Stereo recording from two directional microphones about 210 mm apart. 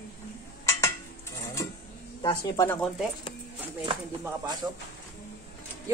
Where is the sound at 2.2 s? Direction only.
20° left (ahead or behind).